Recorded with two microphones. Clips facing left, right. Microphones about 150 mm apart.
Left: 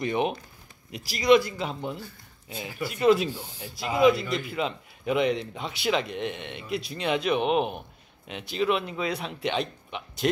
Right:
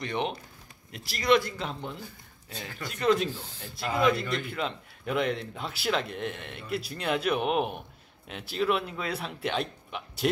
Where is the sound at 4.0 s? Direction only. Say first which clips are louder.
Left 5 dB; centre (ahead or behind).